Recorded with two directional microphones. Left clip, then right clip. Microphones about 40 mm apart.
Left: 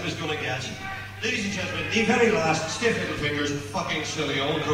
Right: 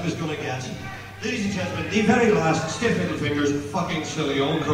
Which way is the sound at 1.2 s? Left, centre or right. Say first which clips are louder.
Even; centre.